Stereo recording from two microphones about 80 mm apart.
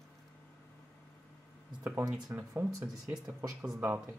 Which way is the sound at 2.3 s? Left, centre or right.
Right.